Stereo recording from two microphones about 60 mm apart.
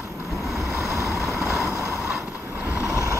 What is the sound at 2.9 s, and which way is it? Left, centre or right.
Vehicle, right.